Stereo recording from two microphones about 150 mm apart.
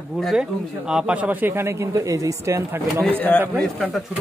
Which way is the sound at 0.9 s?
5° right (ahead or behind).